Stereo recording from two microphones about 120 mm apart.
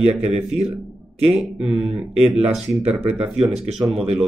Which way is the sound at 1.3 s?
5° right (ahead or behind).